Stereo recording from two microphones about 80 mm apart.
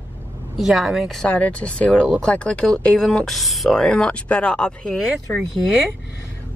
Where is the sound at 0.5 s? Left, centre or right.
Centre.